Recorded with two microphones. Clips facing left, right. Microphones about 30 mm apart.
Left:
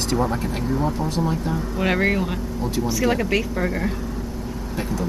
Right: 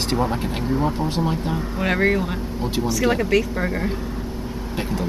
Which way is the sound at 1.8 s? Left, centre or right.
Centre.